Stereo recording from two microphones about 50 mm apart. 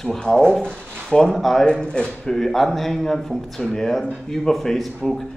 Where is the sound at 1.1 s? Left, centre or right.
Centre.